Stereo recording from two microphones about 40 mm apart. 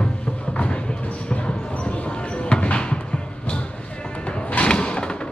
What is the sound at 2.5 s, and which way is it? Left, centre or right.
Music, left.